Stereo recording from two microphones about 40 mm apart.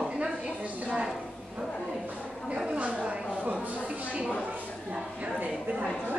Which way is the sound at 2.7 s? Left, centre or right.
Right.